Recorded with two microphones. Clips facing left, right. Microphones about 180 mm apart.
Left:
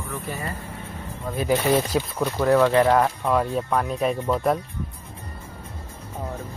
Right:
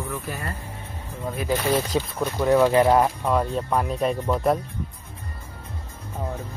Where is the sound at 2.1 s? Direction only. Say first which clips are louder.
Even; 5° right (ahead or behind).